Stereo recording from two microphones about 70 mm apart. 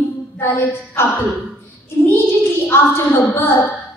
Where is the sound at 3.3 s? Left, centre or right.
Left.